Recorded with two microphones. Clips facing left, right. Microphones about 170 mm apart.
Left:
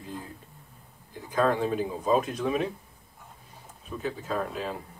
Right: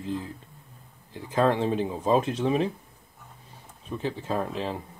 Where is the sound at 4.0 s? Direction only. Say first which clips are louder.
Right 2 dB; 25° right (ahead or behind).